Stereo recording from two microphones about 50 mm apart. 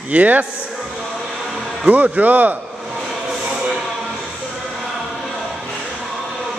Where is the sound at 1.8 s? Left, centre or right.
Right.